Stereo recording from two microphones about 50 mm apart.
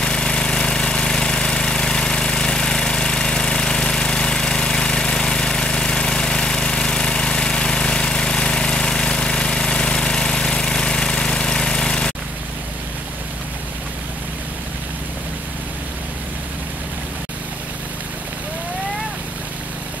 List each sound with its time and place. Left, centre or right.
0.0 s vehicle: centre